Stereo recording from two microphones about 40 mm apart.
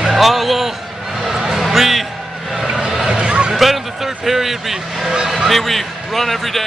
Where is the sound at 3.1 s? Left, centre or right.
Right.